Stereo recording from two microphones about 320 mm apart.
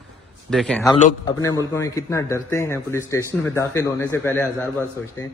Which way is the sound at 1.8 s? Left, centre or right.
Centre.